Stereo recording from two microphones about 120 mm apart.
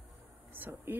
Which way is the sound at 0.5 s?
15° right (ahead or behind).